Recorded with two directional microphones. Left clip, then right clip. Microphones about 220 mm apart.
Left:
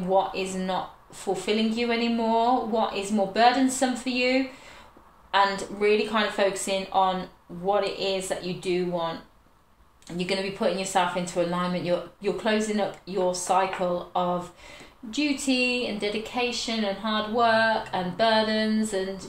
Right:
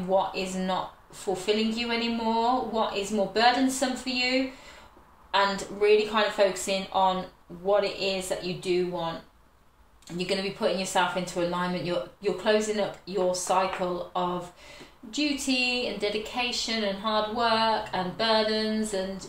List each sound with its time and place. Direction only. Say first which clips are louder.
0.1 s a woman's voice: left 2 dB; 35° left (ahead or behind)
10.1 s a woman's voice: left 1 dB; 30° left (ahead or behind)